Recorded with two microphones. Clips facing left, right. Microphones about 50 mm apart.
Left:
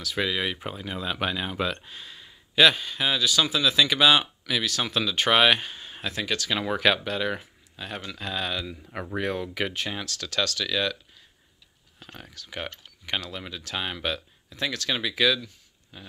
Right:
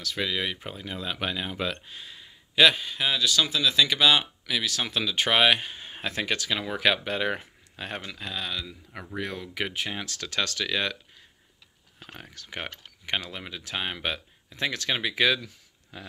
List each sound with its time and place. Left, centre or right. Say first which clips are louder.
0.0 s speech: left 2 dB; centre
5.8 s speech: right 1 dB; right
7.7 s speech: right 1 dB; right
8.5 s speech: left 3 dB; left
9.5 s speech: left 1 dB; centre
9.9 s speech: left 2 dB; right
12.3 s speech: left 1 dB; right
13.0 s speech: even; right
15.4 s a sound: right 1 dB; right